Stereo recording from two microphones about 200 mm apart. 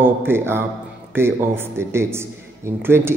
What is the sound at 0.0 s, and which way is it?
A man's voice, 10° right (ahead or behind).